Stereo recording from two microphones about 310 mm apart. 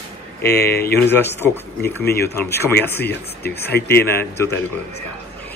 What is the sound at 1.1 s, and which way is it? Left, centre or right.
Speech, centre.